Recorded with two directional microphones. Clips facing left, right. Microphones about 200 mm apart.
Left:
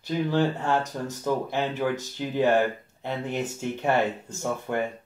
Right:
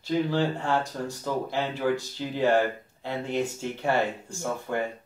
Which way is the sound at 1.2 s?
20° left (ahead or behind).